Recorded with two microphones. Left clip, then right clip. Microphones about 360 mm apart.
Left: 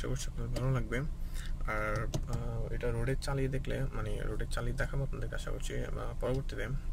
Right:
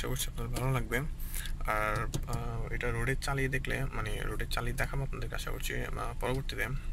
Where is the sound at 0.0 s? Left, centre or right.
Centre.